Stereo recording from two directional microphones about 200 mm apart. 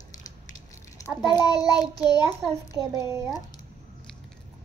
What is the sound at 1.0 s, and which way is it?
Speech, 5° right (ahead or behind).